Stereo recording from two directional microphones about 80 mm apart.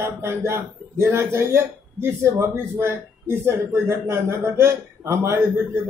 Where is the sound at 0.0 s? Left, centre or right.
Right.